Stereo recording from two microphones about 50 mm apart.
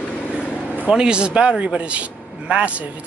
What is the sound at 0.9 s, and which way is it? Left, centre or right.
Speech, centre.